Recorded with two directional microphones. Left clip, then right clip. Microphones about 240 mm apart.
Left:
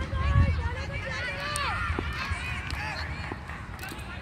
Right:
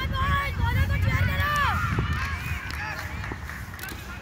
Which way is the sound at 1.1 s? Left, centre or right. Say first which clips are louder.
Right 7 dB; left.